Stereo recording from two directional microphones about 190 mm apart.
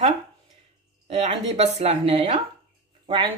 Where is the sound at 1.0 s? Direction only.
35° right (ahead or behind).